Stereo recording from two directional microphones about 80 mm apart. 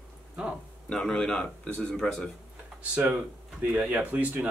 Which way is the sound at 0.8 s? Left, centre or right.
Centre.